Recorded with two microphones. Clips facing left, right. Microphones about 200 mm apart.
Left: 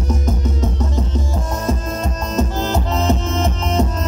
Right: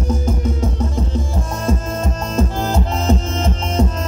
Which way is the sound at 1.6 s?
30° right (ahead or behind).